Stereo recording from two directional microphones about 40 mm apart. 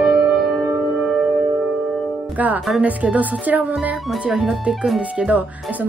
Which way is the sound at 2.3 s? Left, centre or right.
Right.